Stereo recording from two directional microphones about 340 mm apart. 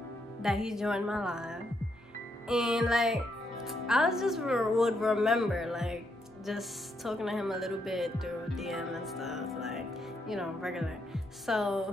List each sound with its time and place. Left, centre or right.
0.4 s speech: centre